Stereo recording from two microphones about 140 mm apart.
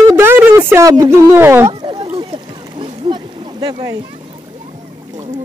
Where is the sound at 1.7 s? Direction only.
35° right (ahead or behind).